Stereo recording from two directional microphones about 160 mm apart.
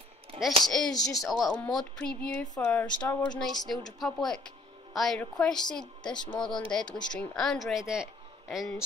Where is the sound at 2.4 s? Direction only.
25° left (ahead or behind).